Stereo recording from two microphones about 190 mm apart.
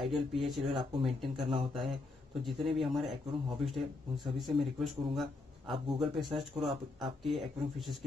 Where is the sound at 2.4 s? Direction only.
Centre (ahead or behind).